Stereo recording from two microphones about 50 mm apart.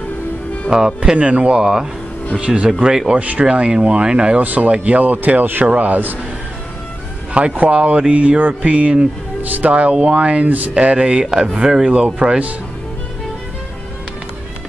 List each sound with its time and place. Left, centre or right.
0.7 s speech: centre
4.4 s speech: right
7.3 s speech: right